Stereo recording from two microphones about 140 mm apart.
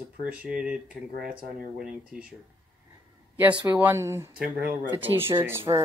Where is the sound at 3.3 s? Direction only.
10° right (ahead or behind).